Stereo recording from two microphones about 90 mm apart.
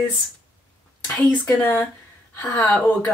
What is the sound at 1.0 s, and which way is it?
Speech, 10° left (ahead or behind).